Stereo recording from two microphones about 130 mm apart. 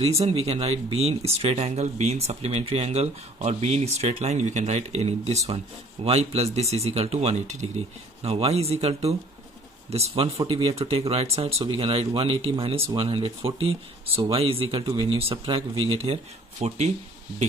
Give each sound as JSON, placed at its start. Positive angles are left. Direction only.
{"t": 0.2, "sound": "speech", "side_deg": -50}